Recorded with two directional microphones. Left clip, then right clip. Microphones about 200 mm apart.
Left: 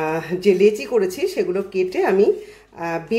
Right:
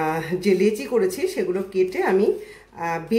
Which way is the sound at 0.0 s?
20° left (ahead or behind).